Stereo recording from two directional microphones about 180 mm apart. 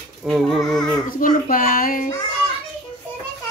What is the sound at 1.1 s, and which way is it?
A child's voice, 50° left (ahead or behind).